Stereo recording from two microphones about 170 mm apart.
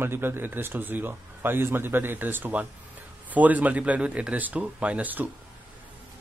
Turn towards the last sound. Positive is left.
turn(degrees=-10)  # may be behind; listen again after turning